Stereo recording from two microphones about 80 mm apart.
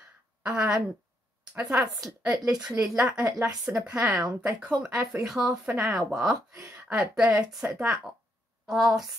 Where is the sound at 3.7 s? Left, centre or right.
Centre.